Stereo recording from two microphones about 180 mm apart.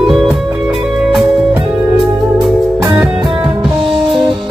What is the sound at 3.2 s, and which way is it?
Music, 25° right (ahead or behind).